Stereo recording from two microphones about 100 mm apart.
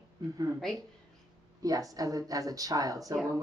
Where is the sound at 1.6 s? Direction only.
35° right (ahead or behind).